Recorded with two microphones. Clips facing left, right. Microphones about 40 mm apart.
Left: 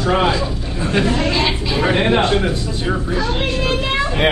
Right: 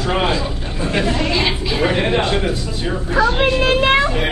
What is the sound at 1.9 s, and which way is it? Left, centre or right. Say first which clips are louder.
Speech: left 5 dB; centre.